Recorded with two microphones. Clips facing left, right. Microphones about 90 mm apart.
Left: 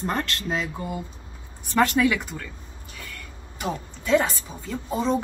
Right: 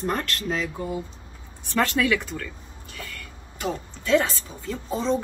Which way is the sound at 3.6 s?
15° left (ahead or behind).